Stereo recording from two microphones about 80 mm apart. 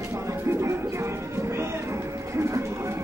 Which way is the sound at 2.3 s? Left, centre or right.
Right.